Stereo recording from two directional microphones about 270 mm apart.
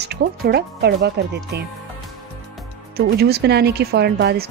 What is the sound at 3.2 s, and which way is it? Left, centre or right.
Speech, right.